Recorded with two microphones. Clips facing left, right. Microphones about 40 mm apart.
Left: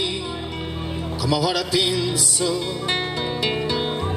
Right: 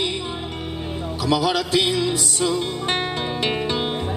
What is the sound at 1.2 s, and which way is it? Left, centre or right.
Music, right.